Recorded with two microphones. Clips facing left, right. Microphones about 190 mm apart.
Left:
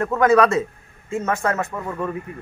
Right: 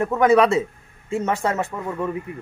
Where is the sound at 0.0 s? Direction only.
15° right (ahead or behind).